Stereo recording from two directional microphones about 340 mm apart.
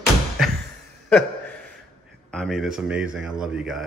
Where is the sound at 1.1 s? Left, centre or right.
Centre.